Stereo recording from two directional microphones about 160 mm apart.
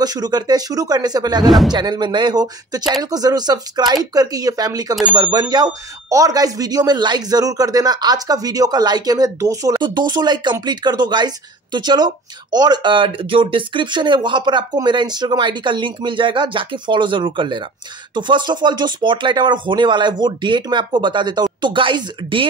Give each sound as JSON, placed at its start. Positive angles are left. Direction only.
{"t": 0.0, "sound": "speech", "side_deg": -25}